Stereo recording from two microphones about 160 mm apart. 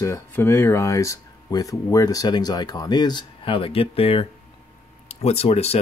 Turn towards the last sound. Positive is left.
turn(degrees=40)  # may be behind; listen again after turning